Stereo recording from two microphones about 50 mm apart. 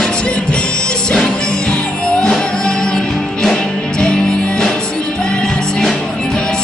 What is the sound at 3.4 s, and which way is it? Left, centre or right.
Music, centre.